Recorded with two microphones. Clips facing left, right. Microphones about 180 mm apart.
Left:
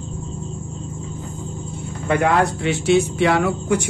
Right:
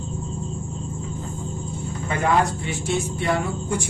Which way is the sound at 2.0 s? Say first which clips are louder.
Left 4 dB; 65° left (ahead or behind).